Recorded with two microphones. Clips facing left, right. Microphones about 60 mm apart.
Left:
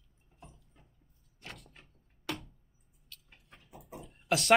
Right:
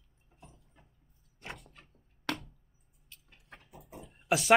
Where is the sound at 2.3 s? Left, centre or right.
Right.